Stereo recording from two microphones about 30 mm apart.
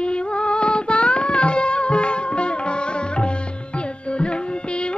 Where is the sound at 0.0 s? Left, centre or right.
Left.